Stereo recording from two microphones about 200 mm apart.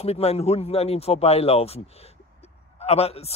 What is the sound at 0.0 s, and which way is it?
Speech, 30° left (ahead or behind).